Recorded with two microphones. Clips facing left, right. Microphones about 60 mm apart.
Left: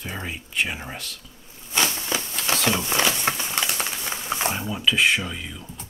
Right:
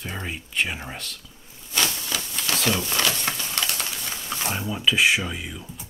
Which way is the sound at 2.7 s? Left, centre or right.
Left.